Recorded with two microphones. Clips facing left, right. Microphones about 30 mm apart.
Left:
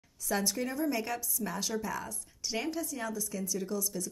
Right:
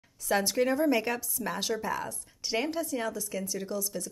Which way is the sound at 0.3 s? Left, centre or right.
Right.